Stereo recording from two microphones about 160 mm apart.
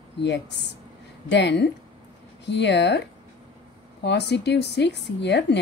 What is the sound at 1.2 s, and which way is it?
A woman's voice, 90° left.